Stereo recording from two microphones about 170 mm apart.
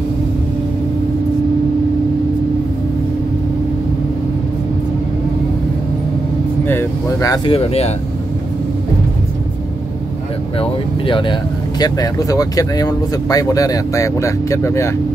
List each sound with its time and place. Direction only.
6.6 s vehicle: 10° left (ahead or behind)
7.4 s speech: 35° left (ahead or behind)
10.6 s speech: 30° left (ahead or behind)